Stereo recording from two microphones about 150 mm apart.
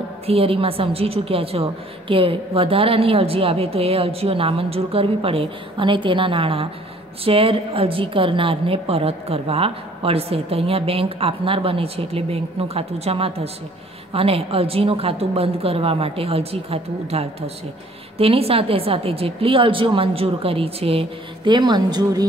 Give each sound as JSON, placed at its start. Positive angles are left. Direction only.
{"t": 0.3, "sound": "a woman's voice", "side_deg": -40}